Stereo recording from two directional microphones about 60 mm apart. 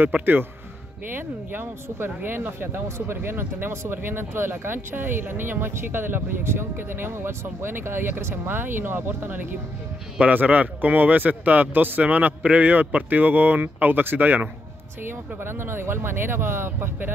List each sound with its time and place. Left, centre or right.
0.0 s a man's voice: right